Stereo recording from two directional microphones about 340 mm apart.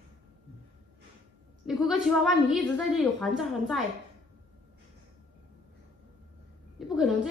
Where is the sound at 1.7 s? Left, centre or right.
Centre.